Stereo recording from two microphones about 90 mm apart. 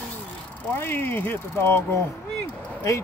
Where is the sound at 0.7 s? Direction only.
25° left (ahead or behind).